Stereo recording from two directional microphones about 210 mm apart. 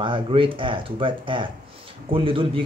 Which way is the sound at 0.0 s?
25° right (ahead or behind).